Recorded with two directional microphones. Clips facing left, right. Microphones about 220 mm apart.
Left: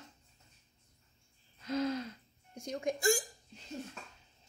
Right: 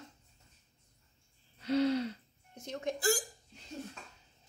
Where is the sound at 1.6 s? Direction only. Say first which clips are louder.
Right 5 dB; 30° right (ahead or behind).